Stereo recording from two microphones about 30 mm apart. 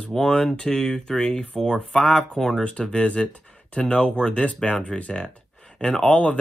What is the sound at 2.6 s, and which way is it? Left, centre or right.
Speech, left.